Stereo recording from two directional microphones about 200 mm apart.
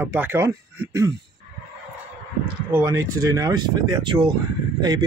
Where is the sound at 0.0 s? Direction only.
10° right (ahead or behind).